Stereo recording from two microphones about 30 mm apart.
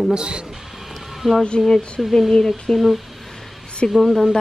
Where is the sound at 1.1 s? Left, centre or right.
Centre.